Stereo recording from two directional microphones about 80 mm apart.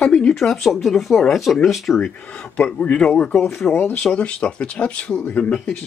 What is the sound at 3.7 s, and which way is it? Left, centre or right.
Speech, left.